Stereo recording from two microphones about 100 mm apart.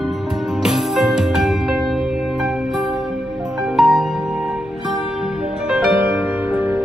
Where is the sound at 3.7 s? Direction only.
Centre (ahead or behind).